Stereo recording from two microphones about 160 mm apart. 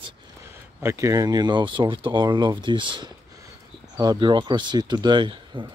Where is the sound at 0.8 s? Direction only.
20° right (ahead or behind).